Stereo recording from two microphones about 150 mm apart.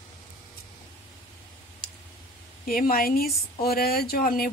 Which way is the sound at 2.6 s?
75° left (ahead or behind).